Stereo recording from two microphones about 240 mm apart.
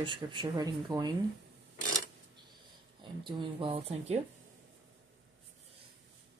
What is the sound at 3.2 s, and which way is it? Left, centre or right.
Speech, right.